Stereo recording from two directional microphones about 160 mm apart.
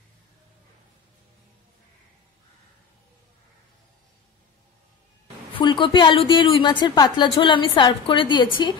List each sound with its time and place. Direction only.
5.5 s a woman's voice: 30° left (ahead or behind)